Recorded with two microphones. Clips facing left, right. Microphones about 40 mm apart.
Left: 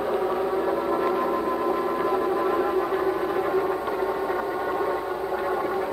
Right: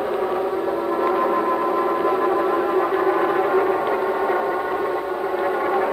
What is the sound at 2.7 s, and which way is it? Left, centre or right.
Gong, right.